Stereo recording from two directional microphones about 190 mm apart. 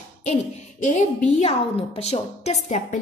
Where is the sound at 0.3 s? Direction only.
40° left (ahead or behind).